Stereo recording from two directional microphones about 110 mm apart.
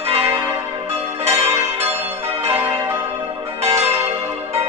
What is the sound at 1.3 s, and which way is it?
Change ringing, 70° right (ahead or behind).